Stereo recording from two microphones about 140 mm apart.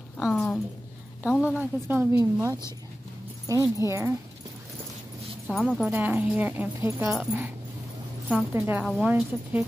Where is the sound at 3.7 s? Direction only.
20° right (ahead or behind).